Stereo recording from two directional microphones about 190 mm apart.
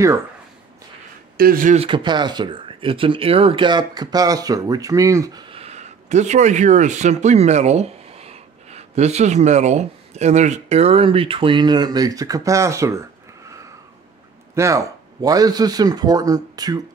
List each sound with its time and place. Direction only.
1.3 s speech: 50° right (ahead or behind)
1.9 s speech: 25° right (ahead or behind)
5.5 s speech: 35° right (ahead or behind); by 13.0 s 15° right (ahead or behind)
14.5 s speech: 15° right (ahead or behind)